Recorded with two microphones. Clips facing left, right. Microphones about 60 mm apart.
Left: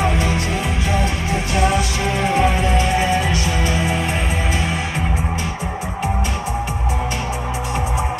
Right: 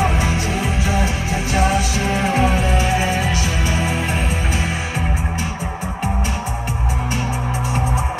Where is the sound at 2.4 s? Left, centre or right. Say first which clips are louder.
Left 1 dB; left.